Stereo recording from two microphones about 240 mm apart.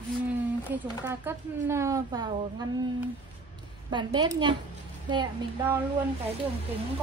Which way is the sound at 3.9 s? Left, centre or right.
Centre.